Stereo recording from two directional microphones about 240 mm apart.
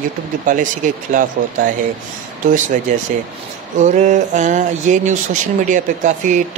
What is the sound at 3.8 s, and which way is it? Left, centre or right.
Speech, right.